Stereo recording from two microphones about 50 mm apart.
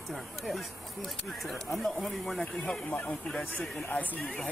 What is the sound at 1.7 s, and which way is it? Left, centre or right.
Speech, centre.